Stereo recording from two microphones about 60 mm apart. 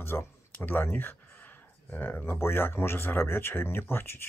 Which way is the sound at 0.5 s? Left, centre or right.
Left.